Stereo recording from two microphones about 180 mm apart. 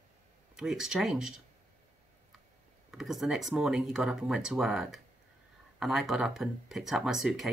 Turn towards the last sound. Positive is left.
turn(degrees=0)  # may be behind; listen again after turning